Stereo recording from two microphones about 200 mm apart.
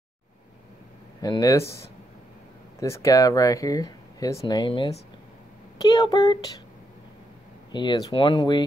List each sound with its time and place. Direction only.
1.2 s speech: 20° left (ahead or behind)
7.7 s speech: 20° left (ahead or behind)